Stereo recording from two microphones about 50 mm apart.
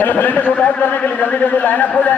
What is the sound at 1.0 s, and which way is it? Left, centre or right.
Speech, left.